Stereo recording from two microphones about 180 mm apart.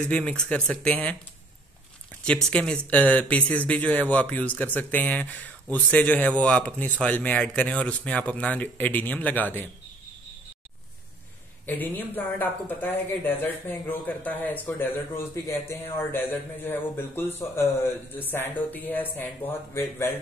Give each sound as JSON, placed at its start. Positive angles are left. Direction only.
{"t": 0.1, "sound": "a man's voice", "side_deg": 5}
{"t": 2.2, "sound": "a man's voice", "side_deg": 5}
{"t": 11.6, "sound": "a man's voice", "side_deg": 10}